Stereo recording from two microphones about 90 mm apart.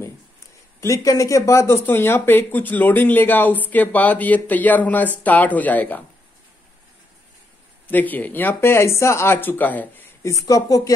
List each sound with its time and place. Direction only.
0.7 s speech: 35° left (ahead or behind); by 6.0 s 20° left (ahead or behind)
7.9 s speech: 20° left (ahead or behind)
10.4 s speech: 40° left (ahead or behind)